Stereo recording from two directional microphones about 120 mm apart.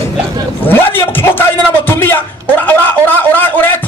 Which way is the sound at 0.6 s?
15° left (ahead or behind).